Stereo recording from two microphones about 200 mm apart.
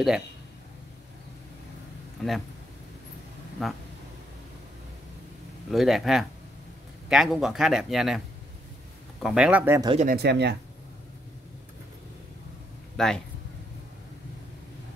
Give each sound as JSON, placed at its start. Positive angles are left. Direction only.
{"t": 2.2, "sound": "speech", "side_deg": 0}
{"t": 3.6, "sound": "speech", "side_deg": 0}
{"t": 5.7, "sound": "speech", "side_deg": 0}
{"t": 9.2, "sound": "speech", "side_deg": -5}
{"t": 10.0, "sound": "speech", "side_deg": -55}
{"t": 12.9, "sound": "speech", "side_deg": 0}